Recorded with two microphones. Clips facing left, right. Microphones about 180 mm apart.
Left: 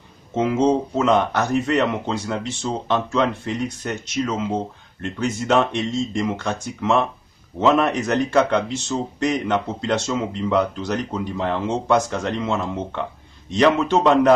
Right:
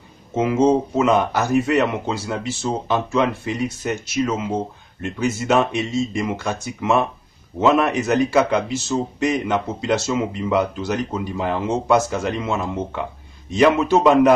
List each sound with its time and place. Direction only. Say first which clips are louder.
0.3 s speech: right 2 dB; 5° right (ahead or behind)